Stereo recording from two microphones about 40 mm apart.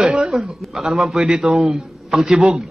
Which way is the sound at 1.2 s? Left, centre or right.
Centre.